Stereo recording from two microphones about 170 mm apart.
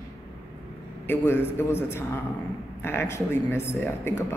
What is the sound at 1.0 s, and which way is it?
Speech, 15° left (ahead or behind).